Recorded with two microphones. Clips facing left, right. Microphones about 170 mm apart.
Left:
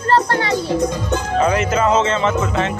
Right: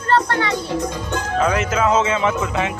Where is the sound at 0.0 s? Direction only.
35° left (ahead or behind).